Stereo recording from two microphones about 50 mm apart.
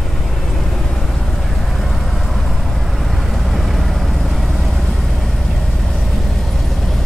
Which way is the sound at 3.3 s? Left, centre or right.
Centre.